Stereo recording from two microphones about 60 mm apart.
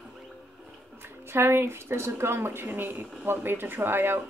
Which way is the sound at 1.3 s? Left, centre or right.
Right.